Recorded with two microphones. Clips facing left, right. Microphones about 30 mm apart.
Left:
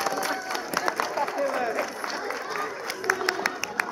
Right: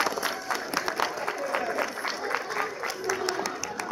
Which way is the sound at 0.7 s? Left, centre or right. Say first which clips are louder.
Left 4 dB; centre.